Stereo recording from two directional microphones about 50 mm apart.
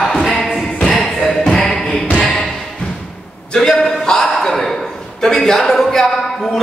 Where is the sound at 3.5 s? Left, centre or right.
Centre.